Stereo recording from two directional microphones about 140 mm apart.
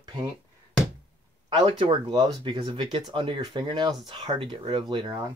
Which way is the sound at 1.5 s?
40° right (ahead or behind).